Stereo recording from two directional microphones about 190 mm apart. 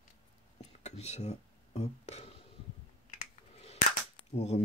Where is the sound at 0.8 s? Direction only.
35° left (ahead or behind).